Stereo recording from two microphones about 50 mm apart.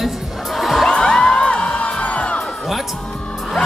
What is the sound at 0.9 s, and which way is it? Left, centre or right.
Music, centre.